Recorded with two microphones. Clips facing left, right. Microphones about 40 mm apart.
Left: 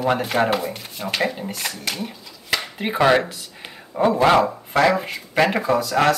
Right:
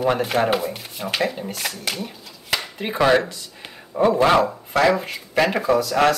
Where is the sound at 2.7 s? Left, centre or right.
Centre.